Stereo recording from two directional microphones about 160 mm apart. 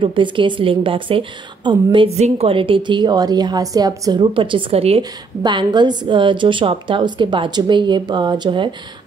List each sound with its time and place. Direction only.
0.0 s a woman's voice: 30° right (ahead or behind)
2.1 s a woman's voice: 40° right (ahead or behind)